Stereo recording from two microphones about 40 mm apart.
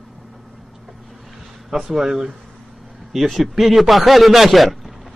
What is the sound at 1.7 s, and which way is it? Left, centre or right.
A man's voice, centre.